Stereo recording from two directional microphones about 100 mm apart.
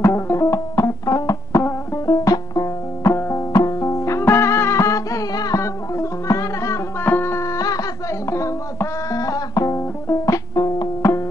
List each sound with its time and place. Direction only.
0.0 s music: 30° left (ahead or behind)
7.1 s music: 25° left (ahead or behind)